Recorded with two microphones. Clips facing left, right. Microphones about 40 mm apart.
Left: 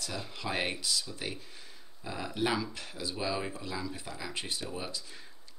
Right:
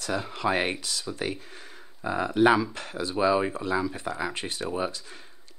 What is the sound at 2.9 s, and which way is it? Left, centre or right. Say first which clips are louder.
Speech: right 11 dB; right.